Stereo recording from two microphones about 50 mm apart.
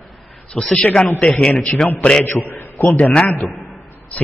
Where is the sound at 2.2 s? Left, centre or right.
Left.